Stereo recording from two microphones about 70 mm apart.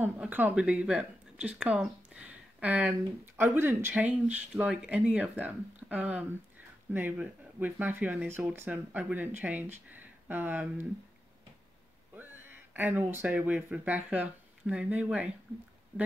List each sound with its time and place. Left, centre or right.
0.3 s speech: right
3.9 s speech: right
12.2 s speech: right